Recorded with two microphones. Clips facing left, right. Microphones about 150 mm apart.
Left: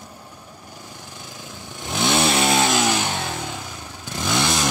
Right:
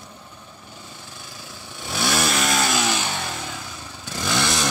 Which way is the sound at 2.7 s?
15° left (ahead or behind).